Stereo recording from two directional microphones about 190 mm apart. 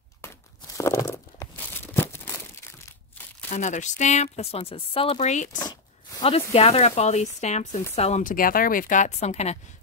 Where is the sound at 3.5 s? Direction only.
40° left (ahead or behind).